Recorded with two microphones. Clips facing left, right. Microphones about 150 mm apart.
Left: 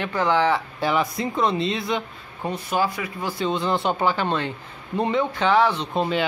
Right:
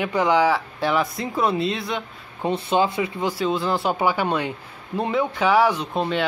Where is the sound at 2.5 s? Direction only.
25° right (ahead or behind).